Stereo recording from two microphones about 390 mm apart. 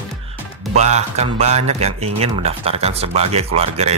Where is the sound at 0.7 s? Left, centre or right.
Centre.